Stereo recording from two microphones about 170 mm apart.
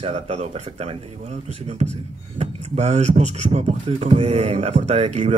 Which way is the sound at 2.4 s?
40° right (ahead or behind).